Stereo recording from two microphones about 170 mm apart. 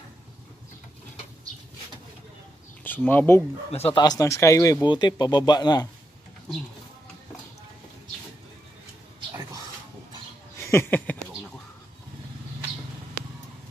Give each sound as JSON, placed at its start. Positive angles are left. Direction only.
{"t": 2.8, "sound": "speech", "side_deg": 10}
{"t": 3.7, "sound": "speech", "side_deg": 35}
{"t": 4.0, "sound": "speech", "side_deg": 20}
{"t": 9.3, "sound": "music", "side_deg": -20}
{"t": 10.6, "sound": "a sound", "side_deg": 15}